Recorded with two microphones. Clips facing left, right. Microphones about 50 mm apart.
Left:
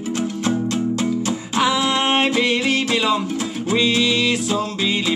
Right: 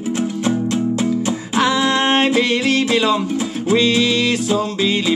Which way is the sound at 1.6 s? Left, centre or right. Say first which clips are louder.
Right 2 dB; centre.